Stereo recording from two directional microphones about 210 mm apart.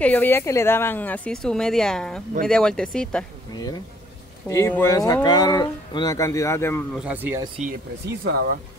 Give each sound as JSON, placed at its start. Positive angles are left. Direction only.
{"t": 0.0, "sound": "speech", "side_deg": 10}
{"t": 3.5, "sound": "speech", "side_deg": 20}
{"t": 7.1, "sound": "speech", "side_deg": -10}